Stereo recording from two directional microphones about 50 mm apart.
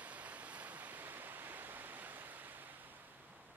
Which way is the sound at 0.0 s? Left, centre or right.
Right.